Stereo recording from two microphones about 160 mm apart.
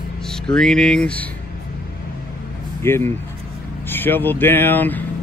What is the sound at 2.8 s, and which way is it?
Speech, 15° left (ahead or behind).